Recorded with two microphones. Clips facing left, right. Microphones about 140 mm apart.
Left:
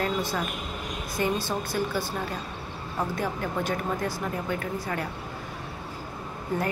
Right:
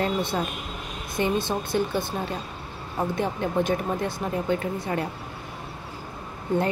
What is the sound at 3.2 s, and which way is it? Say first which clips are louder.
Speech: right 4 dB; 25° right (ahead or behind).